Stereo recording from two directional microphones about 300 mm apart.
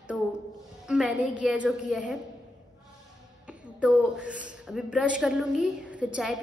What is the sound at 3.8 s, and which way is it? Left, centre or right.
A woman's voice, centre.